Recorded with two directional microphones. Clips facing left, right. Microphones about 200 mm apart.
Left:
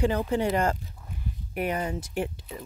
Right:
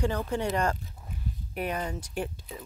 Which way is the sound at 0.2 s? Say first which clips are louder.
Left 3 dB; 5° left (ahead or behind).